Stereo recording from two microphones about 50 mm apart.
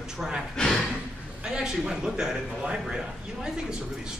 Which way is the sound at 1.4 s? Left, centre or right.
Centre.